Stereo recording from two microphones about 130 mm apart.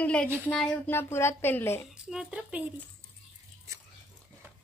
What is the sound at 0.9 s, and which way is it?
Speech, 20° left (ahead or behind).